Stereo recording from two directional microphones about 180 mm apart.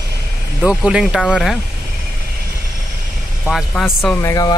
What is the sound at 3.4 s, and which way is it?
Speech, centre (ahead or behind).